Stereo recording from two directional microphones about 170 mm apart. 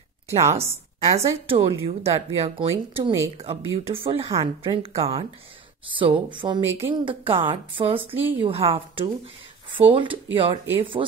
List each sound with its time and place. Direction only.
0.4 s a woman's voice: 15° right (ahead or behind)
1.0 s speech: 30° right (ahead or behind)
5.9 s speech: 30° right (ahead or behind)
8.1 s a woman's voice: 10° right (ahead or behind)
8.4 s speech: 35° right (ahead or behind)